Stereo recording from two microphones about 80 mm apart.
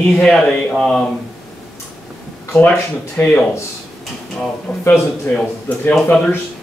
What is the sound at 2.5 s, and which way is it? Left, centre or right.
Speech, centre.